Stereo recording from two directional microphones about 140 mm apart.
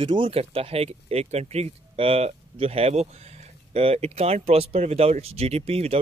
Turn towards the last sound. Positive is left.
turn(degrees=-45)  # may be behind; listen again after turning